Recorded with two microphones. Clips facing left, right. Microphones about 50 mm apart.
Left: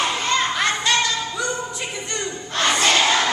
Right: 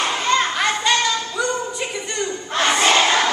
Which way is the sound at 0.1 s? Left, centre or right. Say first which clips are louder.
Right 2 dB; centre.